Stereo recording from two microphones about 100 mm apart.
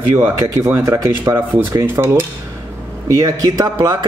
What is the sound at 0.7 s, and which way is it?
Speech, 35° right (ahead or behind).